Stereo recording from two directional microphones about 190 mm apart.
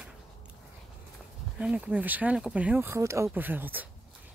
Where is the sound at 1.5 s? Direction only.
5° right (ahead or behind).